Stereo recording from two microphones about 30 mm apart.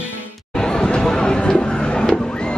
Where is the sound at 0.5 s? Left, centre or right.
Left.